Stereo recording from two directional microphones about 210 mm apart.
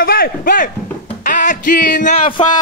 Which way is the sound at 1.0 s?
35° left (ahead or behind).